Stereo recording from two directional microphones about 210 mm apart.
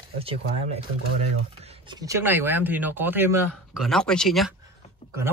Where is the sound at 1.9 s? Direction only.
15° right (ahead or behind).